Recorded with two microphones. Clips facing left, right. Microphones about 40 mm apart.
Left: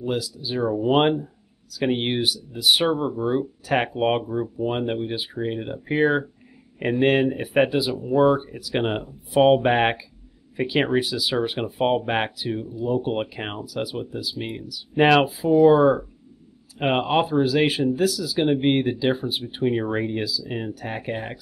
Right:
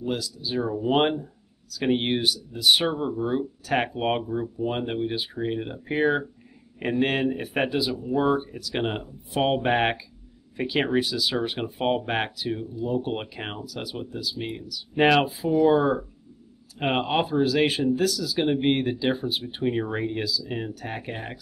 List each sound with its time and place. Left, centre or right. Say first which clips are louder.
0.0 s speech: left 3 dB; centre